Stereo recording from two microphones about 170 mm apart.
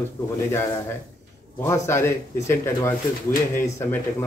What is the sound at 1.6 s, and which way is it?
Speech, 15° left (ahead or behind).